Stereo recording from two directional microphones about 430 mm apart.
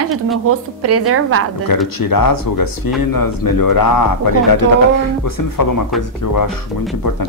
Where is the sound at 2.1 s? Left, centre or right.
Left.